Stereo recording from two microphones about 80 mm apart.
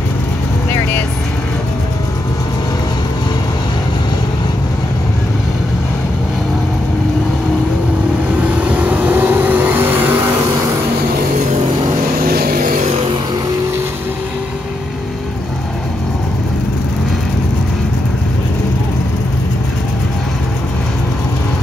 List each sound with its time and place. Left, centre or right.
8.4 s vehicle: centre